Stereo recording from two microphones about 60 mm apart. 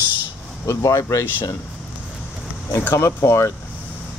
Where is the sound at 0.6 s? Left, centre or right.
Left.